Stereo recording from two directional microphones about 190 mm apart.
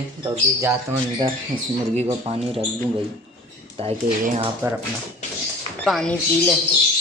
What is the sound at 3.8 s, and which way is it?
Speech, 30° right (ahead or behind).